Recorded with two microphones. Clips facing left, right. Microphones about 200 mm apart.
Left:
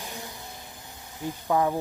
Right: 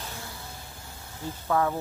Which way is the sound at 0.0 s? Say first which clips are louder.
Left 1 dB; 15° left (ahead or behind).